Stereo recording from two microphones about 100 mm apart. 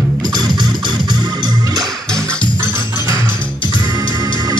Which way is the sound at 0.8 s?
45° right (ahead or behind).